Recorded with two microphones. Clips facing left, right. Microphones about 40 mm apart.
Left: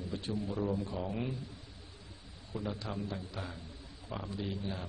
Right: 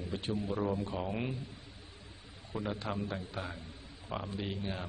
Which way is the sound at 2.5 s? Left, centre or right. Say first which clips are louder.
Right 2 dB; right.